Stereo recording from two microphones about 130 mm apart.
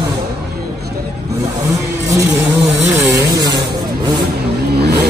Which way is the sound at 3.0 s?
25° right (ahead or behind).